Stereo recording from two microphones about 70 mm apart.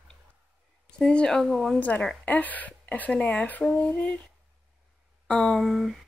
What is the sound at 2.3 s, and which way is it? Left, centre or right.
Speech, left.